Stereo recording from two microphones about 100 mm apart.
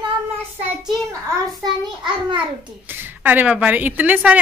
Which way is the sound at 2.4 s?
20° right (ahead or behind).